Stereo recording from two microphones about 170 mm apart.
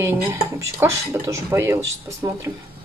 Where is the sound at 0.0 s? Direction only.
15° right (ahead or behind).